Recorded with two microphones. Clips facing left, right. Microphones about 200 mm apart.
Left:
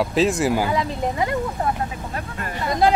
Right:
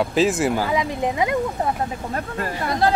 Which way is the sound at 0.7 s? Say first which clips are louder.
Right 1 dB; 15° right (ahead or behind).